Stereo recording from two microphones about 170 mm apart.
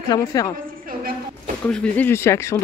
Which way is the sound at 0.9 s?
55° right (ahead or behind).